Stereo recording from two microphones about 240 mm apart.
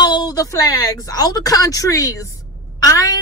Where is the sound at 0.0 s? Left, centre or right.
Centre.